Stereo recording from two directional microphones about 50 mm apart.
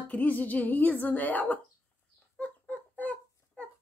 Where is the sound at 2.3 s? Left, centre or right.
Left.